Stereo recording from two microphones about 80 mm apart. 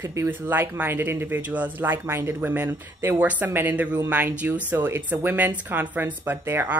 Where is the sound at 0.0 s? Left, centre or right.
Right.